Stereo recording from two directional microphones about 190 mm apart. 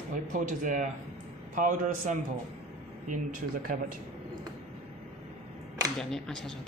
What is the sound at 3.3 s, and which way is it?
Speech, 50° right (ahead or behind).